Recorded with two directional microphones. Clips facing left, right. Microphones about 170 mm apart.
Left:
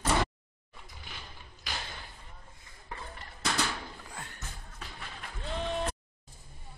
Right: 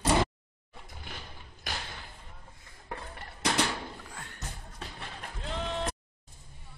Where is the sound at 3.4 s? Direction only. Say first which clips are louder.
Right 3 dB; 25° right (ahead or behind).